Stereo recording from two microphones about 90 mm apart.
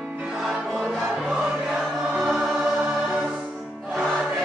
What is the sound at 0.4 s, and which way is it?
Music, 5° right (ahead or behind).